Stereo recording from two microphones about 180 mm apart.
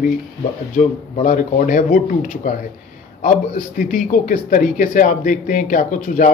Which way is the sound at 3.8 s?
50° left (ahead or behind).